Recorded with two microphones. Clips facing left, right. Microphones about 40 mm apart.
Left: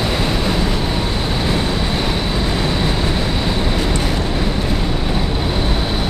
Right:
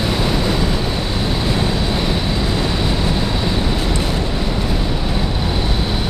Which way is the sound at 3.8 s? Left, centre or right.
Left.